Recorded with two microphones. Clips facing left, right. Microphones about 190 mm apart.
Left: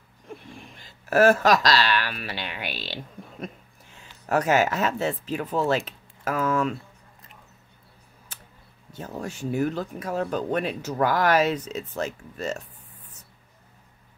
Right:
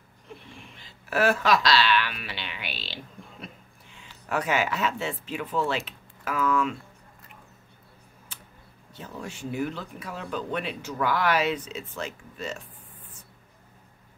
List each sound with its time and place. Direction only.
0.6 s speech: 45° left (ahead or behind)
8.3 s a sound: 40° left (ahead or behind)
8.9 s speech: 45° left (ahead or behind)